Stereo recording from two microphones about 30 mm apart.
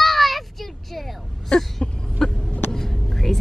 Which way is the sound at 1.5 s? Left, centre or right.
Left.